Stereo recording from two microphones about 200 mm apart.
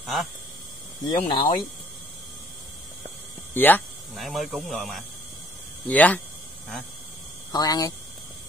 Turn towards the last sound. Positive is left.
turn(degrees=20)  # may be behind; listen again after turning